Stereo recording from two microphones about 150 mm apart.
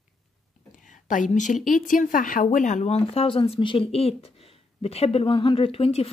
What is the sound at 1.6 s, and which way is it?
A woman's voice, 65° left (ahead or behind).